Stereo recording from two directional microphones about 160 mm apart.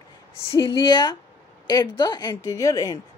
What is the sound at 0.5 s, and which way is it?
A woman's voice, 25° left (ahead or behind).